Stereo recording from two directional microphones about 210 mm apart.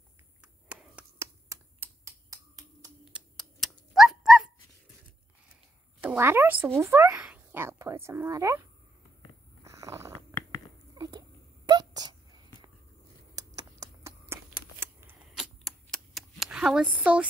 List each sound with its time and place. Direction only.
0.4 s finger snapping: 5° right (ahead or behind)
3.1 s dog: centre (ahead or behind)
5.9 s a woman's voice: 10° right (ahead or behind)
9.7 s purr: 15° right (ahead or behind)
11.0 s a sound: 20° right (ahead or behind)
13.7 s shuffling cards: 10° right (ahead or behind)